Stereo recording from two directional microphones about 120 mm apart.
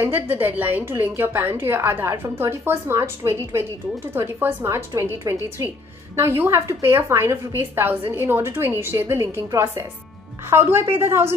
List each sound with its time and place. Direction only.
0.0 s a woman's voice: 15° right (ahead or behind)